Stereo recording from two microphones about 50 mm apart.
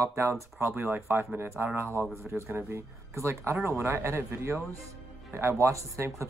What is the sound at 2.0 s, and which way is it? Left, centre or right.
Speech, right.